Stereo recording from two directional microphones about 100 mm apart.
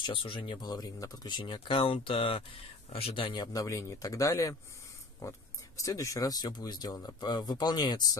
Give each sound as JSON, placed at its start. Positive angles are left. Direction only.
{"t": 0.0, "sound": "speech", "side_deg": 60}
{"t": 0.6, "sound": "speech", "side_deg": 40}
{"t": 3.5, "sound": "speech", "side_deg": 30}